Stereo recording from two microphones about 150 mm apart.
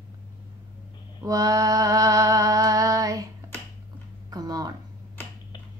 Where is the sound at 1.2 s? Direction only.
25° right (ahead or behind).